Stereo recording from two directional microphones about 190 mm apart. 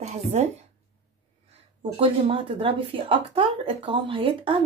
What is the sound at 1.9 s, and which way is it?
A woman's voice, 30° right (ahead or behind).